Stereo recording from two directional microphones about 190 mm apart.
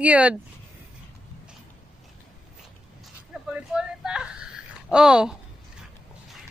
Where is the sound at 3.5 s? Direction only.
5° right (ahead or behind).